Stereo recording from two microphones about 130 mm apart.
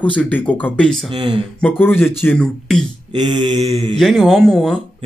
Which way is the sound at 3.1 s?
35° right (ahead or behind).